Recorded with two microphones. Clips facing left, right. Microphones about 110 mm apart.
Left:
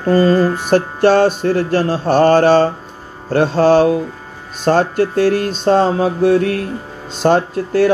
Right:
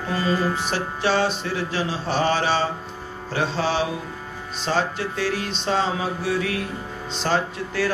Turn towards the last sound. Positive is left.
turn(degrees=55)  # may be behind; listen again after turning